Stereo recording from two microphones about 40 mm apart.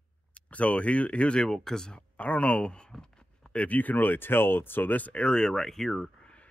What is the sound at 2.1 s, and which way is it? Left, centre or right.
Speech, left.